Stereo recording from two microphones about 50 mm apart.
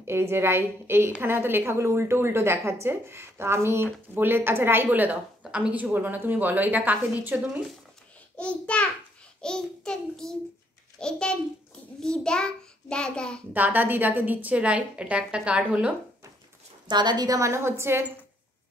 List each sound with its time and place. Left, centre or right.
0.0 s a woman's voice: right
4.8 s a woman's voice: right
5.4 s speech: right
5.9 s a woman's voice: right
8.4 s a child's voice: left
9.4 s child singing: centre
13.5 s a woman's voice: right
17.4 s a woman's voice: right